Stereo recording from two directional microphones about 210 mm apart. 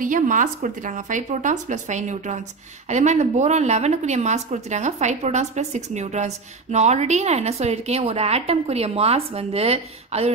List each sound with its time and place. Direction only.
0.0 s a woman's voice: 40° right (ahead or behind)